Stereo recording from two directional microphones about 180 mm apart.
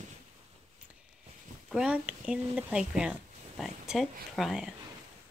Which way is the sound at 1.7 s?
5° right (ahead or behind).